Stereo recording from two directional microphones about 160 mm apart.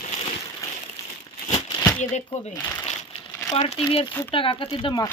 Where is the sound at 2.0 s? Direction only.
50° left (ahead or behind).